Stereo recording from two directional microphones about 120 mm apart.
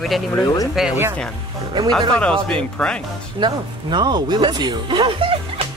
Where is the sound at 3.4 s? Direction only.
40° right (ahead or behind).